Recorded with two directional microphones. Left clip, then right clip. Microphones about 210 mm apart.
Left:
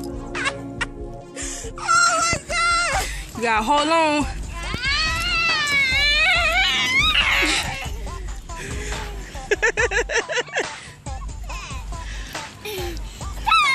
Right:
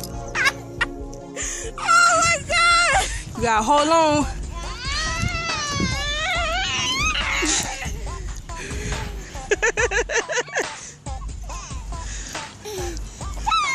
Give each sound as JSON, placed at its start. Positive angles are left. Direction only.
{"t": 0.3, "sound": "turkey", "side_deg": 10}
{"t": 1.3, "sound": "wail", "side_deg": 5}
{"t": 4.6, "sound": "baby cry", "side_deg": -25}
{"t": 5.9, "sound": "a sound", "side_deg": -15}
{"t": 6.4, "sound": "music", "side_deg": 5}
{"t": 7.0, "sound": "music", "side_deg": 25}
{"t": 7.5, "sound": "music", "side_deg": -5}
{"t": 12.6, "sound": "music", "side_deg": -15}
{"t": 13.5, "sound": "dog", "side_deg": -5}